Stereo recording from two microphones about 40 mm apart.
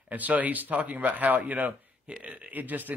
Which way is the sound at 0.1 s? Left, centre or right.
Right.